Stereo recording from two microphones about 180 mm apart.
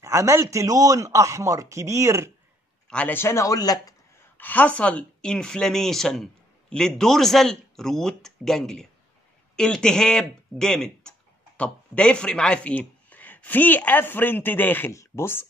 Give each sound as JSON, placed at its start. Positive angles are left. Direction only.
{"t": 0.0, "sound": "a man's voice", "side_deg": -15}
{"t": 2.9, "sound": "speech", "side_deg": 10}